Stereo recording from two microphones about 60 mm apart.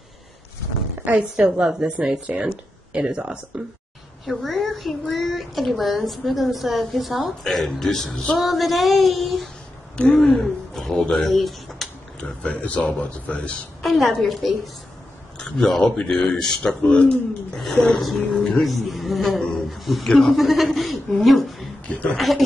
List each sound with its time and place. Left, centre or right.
1.3 s a woman's voice: centre
1.9 s speech: right
4.3 s a man's voice: centre
9.9 s speech: centre
10.2 s speech: centre
12.4 s speech: left
13.8 s a man's voice: centre
21.8 s speech: centre
22.1 s a man's voice: centre